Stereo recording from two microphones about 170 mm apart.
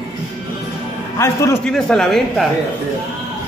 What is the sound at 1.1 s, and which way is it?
Speech, 15° left (ahead or behind).